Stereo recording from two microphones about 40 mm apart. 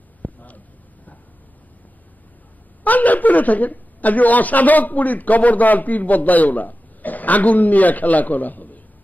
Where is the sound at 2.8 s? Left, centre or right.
Left.